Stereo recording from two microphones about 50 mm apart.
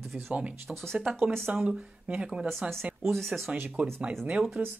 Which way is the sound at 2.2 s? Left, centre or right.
Centre.